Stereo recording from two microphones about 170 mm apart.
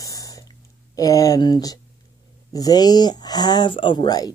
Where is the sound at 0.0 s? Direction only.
20° left (ahead or behind).